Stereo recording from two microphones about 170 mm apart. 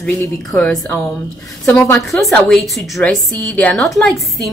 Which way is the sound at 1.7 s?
20° left (ahead or behind).